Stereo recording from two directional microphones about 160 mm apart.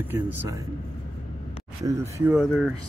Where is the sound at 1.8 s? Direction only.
20° right (ahead or behind).